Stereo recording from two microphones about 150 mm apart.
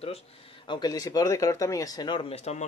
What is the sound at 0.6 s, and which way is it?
Speech, 30° left (ahead or behind).